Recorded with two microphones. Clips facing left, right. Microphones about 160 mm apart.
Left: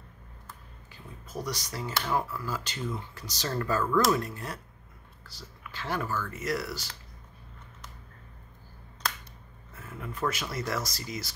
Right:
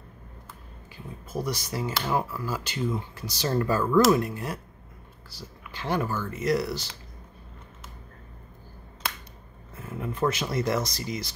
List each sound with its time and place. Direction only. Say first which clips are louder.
1.3 s speech: right 5 dB; 10° right (ahead or behind)
5.7 s speech: right 4 dB; 20° right (ahead or behind)
9.8 s speech: right 6 dB; 20° right (ahead or behind)